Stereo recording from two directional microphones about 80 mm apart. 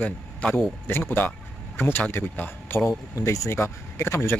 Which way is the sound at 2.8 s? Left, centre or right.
Left.